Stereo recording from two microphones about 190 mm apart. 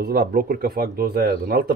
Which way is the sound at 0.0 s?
55° right (ahead or behind).